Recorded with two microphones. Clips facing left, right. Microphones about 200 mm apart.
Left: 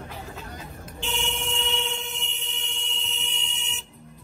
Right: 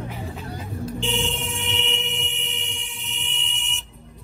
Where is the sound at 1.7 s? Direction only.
20° right (ahead or behind).